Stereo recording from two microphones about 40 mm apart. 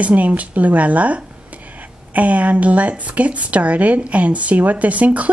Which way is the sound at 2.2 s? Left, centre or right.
Right.